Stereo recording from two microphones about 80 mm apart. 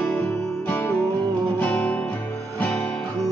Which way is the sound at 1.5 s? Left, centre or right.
Centre.